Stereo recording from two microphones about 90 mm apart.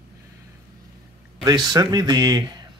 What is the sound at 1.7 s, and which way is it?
Speech, 45° right (ahead or behind).